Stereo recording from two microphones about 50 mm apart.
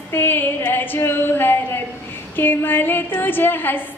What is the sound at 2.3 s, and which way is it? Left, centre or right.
A woman's voice, left.